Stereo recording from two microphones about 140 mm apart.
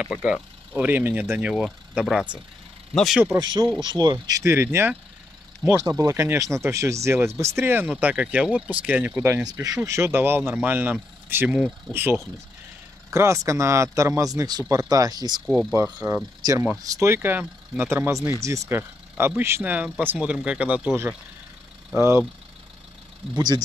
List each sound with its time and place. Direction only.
0.2 s speech: 10° right (ahead or behind)
3.3 s speech: 30° right (ahead or behind)
15.7 s speech: 20° right (ahead or behind)